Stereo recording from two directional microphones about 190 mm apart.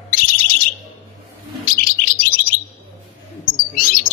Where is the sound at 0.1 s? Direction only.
50° left (ahead or behind).